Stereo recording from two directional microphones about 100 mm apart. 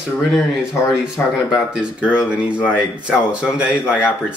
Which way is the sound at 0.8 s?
20° left (ahead or behind).